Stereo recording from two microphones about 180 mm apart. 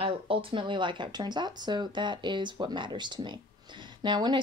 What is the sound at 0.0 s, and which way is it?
Speech, 30° right (ahead or behind).